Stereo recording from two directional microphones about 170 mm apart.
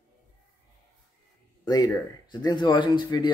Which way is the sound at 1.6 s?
25° left (ahead or behind).